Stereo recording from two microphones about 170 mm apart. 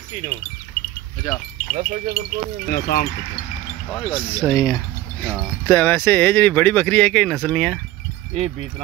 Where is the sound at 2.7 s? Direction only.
65° left (ahead or behind).